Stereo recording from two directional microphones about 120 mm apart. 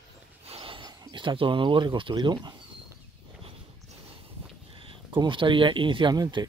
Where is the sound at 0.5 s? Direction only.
50° right (ahead or behind).